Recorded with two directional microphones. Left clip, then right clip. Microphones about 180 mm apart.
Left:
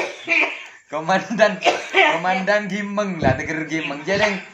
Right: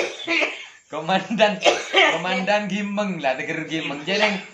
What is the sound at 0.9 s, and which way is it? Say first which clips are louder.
A man's voice: left 2 dB; 20° left (ahead or behind).